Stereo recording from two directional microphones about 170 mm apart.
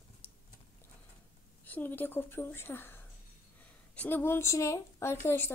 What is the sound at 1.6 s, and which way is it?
A woman's voice, 10° left (ahead or behind).